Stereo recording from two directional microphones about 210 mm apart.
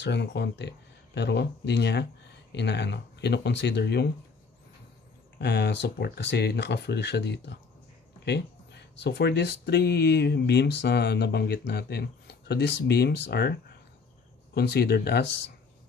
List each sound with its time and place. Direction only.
0.0 s speech: 55° left (ahead or behind)
5.4 s speech: 55° left (ahead or behind)